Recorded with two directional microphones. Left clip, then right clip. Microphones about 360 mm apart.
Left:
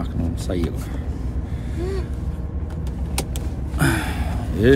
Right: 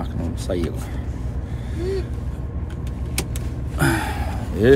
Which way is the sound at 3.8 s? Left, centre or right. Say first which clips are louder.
Right 1 dB; centre.